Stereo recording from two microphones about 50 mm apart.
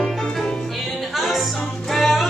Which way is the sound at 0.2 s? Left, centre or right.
Centre.